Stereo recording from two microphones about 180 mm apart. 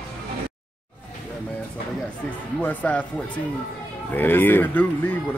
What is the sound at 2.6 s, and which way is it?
Speech, 10° left (ahead or behind).